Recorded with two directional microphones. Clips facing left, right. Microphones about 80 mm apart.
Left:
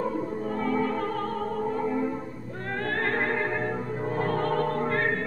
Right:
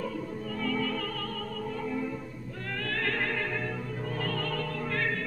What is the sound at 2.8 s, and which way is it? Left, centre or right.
Opera, left.